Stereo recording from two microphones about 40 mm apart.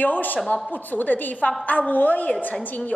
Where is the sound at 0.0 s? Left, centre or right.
Left.